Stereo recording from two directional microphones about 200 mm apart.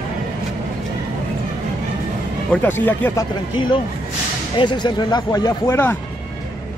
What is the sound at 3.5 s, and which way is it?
Speech, 25° left (ahead or behind).